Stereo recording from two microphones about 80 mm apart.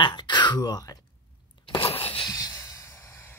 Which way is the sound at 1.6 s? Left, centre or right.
Left.